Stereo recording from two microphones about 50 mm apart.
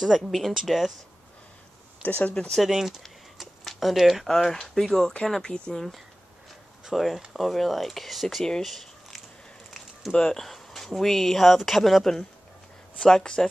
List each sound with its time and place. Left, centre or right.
0.0 s speech: centre
2.0 s speech: left
2.6 s speech: centre
3.3 s a sound: centre
4.3 s speech: centre
6.8 s speech: centre
8.6 s a sound: centre
10.3 s speech: centre